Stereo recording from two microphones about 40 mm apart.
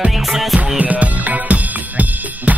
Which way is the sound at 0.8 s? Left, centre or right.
Right.